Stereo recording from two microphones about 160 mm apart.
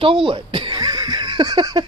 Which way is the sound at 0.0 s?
30° right (ahead or behind).